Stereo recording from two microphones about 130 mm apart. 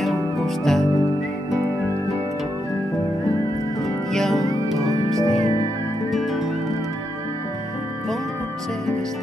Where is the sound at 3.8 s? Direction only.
Centre (ahead or behind).